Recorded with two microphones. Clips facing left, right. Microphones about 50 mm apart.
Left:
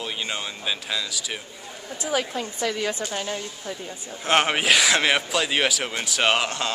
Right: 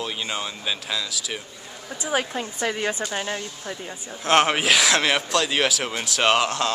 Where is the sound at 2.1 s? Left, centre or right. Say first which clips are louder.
Right 1 dB; centre.